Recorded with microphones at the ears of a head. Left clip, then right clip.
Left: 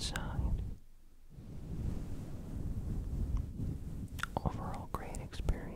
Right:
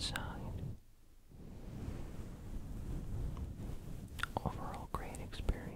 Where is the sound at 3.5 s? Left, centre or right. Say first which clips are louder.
Left 5 dB; left.